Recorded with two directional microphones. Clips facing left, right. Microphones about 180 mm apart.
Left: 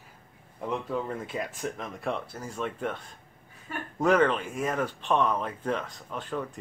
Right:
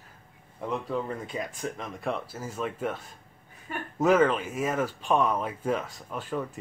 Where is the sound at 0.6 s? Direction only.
Centre (ahead or behind).